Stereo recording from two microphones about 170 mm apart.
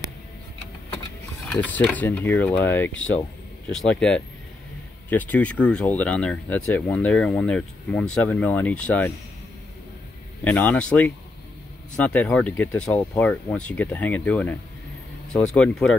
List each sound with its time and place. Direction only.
1.4 s speech: 10° left (ahead or behind)
10.4 s speech: 10° left (ahead or behind)